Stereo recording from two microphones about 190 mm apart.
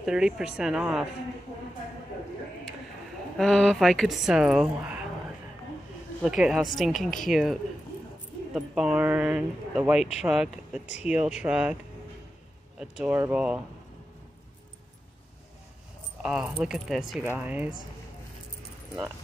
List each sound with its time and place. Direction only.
0.0 s speech: 5° right (ahead or behind)
3.3 s speech: centre (ahead or behind)
6.2 s speech: centre (ahead or behind)
8.5 s speech: 5° right (ahead or behind)
12.7 s speech: 5° right (ahead or behind)
16.2 s speech: 5° right (ahead or behind)